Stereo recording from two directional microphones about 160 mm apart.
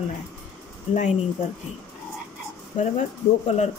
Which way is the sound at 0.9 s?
50° left (ahead or behind).